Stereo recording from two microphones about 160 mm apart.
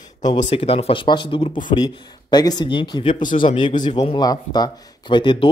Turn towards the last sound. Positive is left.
turn(degrees=30)  # may be behind; listen again after turning